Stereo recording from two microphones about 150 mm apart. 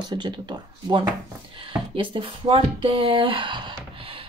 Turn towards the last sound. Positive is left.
turn(degrees=-40)  # may be behind; listen again after turning